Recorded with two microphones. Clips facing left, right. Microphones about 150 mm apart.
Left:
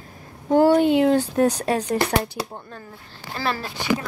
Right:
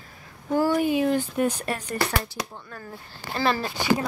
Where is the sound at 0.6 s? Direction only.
70° left (ahead or behind); by 1.9 s 90° left.